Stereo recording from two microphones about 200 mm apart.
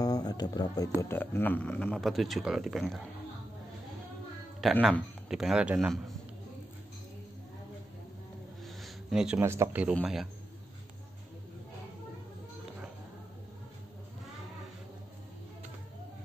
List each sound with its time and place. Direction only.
0.0 s a sound: 20° left (ahead or behind)
1.0 s speech: 10° left (ahead or behind)
4.6 s speech: centre (ahead or behind)
8.6 s speech: centre (ahead or behind)